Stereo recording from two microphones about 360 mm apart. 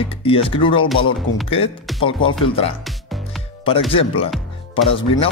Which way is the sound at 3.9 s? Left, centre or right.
Centre.